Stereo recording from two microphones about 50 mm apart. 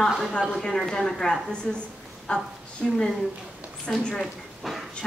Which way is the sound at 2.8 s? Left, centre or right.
Centre.